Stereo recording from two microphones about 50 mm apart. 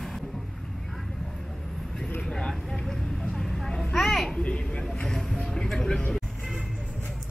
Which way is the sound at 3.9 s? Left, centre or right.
Centre.